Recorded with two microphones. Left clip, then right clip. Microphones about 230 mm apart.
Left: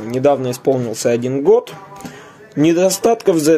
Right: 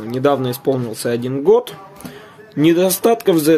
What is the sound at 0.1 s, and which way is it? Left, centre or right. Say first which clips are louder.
Speech: left 2 dB; centre.